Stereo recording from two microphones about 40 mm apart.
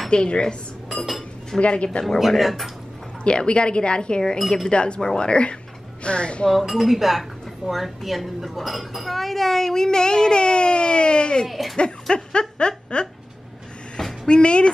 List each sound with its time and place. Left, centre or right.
0.1 s a woman's voice: left
0.8 s cutlery: centre
1.6 s a woman's voice: left
2.1 s speech: centre
3.3 s a woman's voice: left
4.6 s a woman's voice: left
6.5 s speech: centre; by 11.4 s left
11.4 s speech: centre
11.7 s speech: left
14.2 s a woman's voice: left